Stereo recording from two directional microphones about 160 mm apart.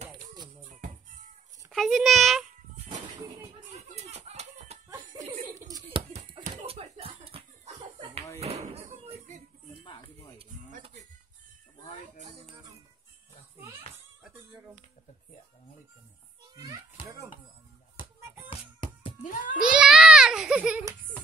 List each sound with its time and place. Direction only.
0.7 s music: 55° right (ahead or behind)
1.7 s a child's voice: centre (ahead or behind)
2.7 s music: 45° right (ahead or behind)
3.7 s a sound: 45° right (ahead or behind)
4.8 s laughter: 20° right (ahead or behind)
5.5 s a sound: 25° right (ahead or behind)
6.1 s a sound: 35° right (ahead or behind)
6.5 s slap: 35° right (ahead or behind)
8.4 s music: 40° right (ahead or behind)
18.5 s music: 35° left (ahead or behind)
19.2 s music: 60° left (ahead or behind)
19.6 s a sound: 5° right (ahead or behind)